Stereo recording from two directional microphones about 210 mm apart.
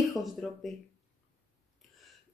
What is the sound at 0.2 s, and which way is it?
Speech, centre (ahead or behind).